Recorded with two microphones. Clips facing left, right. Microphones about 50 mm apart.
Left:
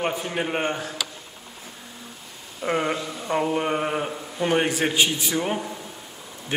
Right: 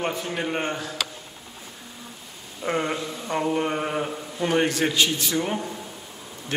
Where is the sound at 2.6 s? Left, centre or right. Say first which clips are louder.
Left 1 dB; centre.